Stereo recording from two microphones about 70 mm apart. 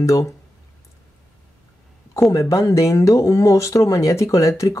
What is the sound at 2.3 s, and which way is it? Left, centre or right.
Speech, left.